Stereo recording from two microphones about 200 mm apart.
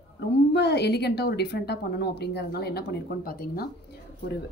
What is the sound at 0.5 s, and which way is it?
Speech, 55° left (ahead or behind).